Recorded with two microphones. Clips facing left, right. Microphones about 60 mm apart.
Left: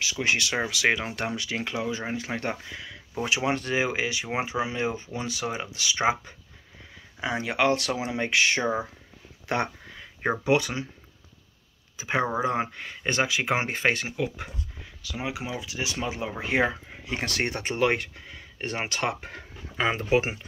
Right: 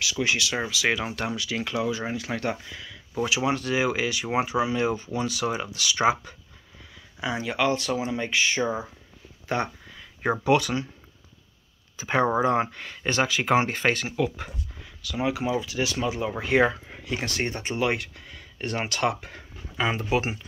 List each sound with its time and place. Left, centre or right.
0.0 s speech: left
1.6 s speech: left
7.2 s speech: left
9.5 s a sound: left
10.4 s speech: left
12.0 s speech: centre
17.2 s speech: left
18.0 s a sound: left
18.9 s speech: left